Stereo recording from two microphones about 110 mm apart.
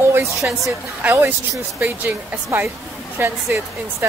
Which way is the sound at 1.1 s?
25° right (ahead or behind).